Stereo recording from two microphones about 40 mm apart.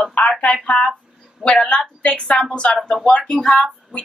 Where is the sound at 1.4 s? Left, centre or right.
Centre.